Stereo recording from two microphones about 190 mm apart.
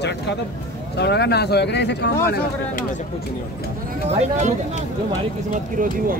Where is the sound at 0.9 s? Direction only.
60° left (ahead or behind).